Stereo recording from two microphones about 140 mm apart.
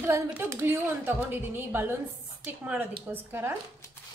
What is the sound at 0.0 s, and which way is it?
A woman's voice, 20° right (ahead or behind).